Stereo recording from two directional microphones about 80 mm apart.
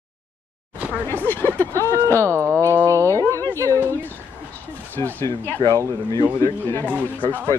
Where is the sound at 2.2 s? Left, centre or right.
Right.